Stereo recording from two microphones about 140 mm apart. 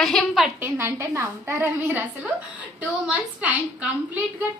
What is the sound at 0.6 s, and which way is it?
A woman's voice, 15° right (ahead or behind).